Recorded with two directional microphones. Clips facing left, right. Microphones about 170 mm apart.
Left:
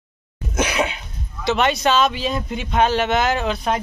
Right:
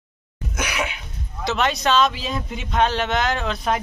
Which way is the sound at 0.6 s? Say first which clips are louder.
Left 6 dB; 25° left (ahead or behind).